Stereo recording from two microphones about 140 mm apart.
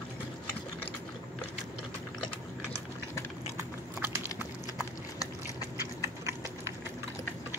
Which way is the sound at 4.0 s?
15° right (ahead or behind).